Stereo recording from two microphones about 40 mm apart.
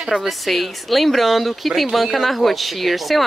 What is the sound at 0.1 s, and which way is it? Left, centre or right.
Speech, right.